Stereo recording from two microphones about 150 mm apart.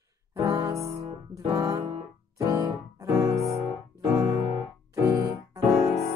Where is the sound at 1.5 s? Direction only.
20° right (ahead or behind).